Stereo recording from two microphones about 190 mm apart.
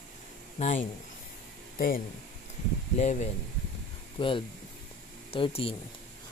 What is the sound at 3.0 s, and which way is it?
Speech, 35° left (ahead or behind).